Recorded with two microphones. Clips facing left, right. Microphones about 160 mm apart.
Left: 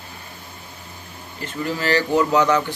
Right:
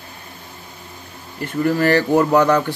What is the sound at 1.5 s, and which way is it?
Speech, 55° right (ahead or behind).